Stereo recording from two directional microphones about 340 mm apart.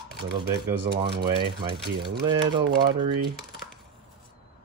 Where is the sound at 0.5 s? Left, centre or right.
Right.